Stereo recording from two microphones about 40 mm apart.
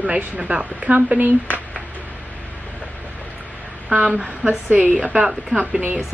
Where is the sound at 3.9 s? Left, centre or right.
Right.